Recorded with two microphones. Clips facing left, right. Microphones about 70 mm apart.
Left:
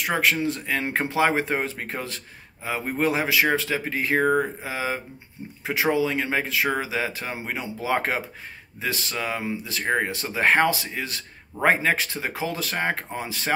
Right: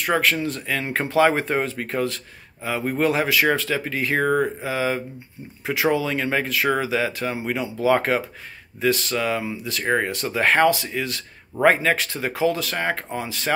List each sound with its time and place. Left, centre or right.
0.1 s speech: left